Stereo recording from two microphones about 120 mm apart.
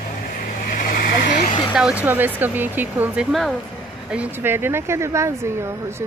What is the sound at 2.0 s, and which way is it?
Speech, 15° right (ahead or behind).